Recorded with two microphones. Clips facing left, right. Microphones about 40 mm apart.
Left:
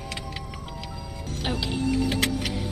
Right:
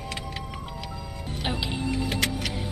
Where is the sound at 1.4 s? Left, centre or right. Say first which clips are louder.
Left 2 dB; centre.